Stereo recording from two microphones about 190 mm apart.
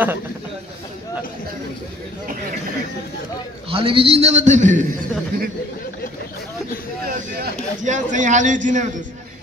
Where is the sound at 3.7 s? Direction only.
30° right (ahead or behind).